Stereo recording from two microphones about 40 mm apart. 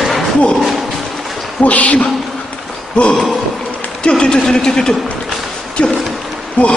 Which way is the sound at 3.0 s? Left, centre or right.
Left.